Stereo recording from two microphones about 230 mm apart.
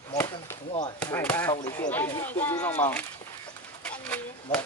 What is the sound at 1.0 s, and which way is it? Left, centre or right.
Speech, centre.